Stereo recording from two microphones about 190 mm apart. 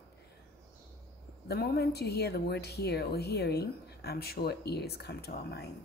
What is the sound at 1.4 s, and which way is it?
A woman's voice, 55° left (ahead or behind).